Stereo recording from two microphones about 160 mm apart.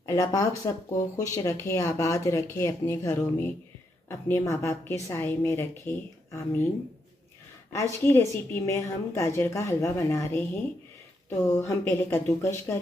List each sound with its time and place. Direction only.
0.0 s a woman's voice: 20° left (ahead or behind)
7.7 s a woman's voice: 15° left (ahead or behind)